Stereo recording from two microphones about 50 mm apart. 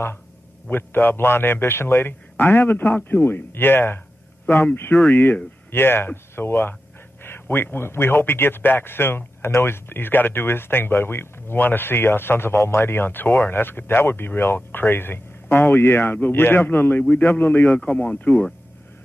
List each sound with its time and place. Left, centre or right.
0.7 s speech: left
5.0 s speech: left
17.7 s speech: left